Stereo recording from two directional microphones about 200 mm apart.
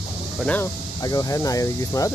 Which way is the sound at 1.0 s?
20° left (ahead or behind).